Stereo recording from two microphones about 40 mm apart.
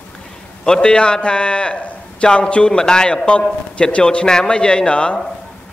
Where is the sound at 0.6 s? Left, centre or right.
Centre.